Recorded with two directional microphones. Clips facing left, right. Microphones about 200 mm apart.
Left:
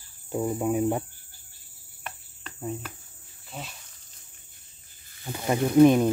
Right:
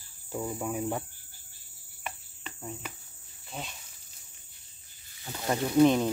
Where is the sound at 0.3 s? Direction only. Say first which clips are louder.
Left 7 dB; 25° left (ahead or behind).